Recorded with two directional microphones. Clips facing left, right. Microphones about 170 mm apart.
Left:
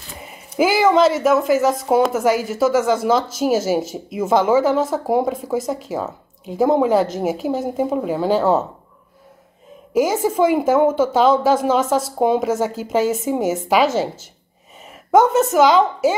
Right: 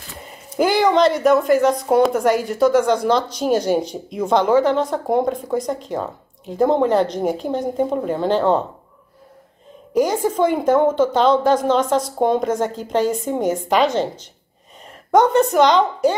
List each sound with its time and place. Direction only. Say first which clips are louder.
0.6 s speech: left 1 dB; 5° left (ahead or behind)
9.9 s a woman's voice: left 1 dB; 5° left (ahead or behind)